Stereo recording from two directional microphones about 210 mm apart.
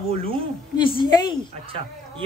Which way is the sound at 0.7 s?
25° left (ahead or behind).